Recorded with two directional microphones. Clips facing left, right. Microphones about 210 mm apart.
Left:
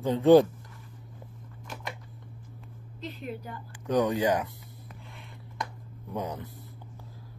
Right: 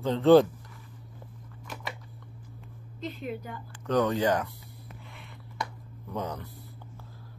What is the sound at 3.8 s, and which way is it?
Speech, 15° left (ahead or behind).